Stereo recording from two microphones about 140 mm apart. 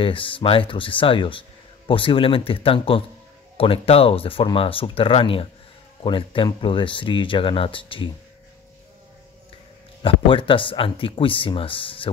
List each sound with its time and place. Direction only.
0.0 s speech: 40° left (ahead or behind)
10.0 s speech: 40° left (ahead or behind)